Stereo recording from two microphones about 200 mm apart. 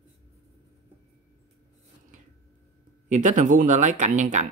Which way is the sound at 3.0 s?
40° right (ahead or behind).